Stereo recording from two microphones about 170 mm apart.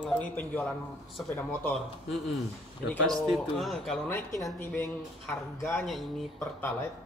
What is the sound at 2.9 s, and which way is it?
A man's voice, 5° left (ahead or behind).